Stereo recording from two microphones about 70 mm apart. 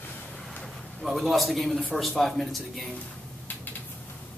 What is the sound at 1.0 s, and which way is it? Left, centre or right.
Speech, centre.